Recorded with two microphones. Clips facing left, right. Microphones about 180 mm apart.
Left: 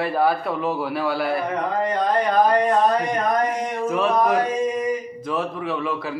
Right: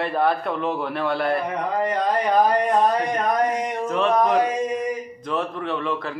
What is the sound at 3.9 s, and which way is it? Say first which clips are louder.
Speech: even; 5° left (ahead or behind).